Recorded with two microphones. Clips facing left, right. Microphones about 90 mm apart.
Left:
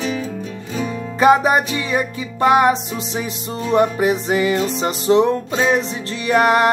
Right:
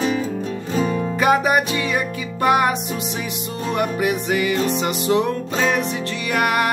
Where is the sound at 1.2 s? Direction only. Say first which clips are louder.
Left 4 dB; 30° left (ahead or behind).